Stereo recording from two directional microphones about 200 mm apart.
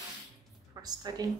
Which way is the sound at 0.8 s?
20° right (ahead or behind).